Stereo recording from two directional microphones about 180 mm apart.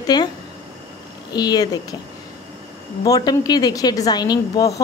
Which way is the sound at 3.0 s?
20° left (ahead or behind).